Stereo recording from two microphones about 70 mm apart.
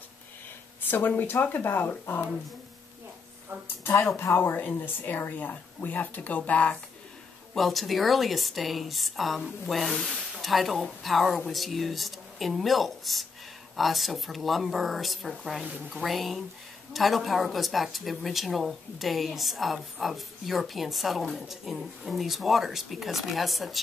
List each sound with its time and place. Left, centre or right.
0.8 s speech: left
3.6 s speech: left
4.4 s speech: left
7.5 s speech: centre